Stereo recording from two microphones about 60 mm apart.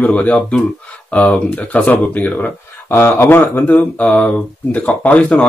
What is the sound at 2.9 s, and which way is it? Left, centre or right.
Speech, left.